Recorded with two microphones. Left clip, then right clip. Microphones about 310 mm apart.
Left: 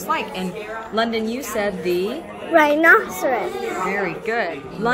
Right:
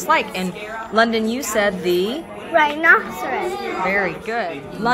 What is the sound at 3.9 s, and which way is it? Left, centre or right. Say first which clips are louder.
A woman's voice: right 5 dB; centre.